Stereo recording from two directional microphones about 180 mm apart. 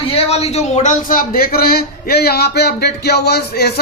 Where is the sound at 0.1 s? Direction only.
35° left (ahead or behind).